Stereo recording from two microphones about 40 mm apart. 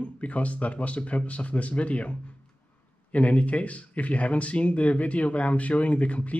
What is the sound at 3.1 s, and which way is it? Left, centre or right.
Speech, left.